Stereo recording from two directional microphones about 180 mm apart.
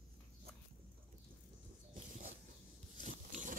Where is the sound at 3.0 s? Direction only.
45° right (ahead or behind).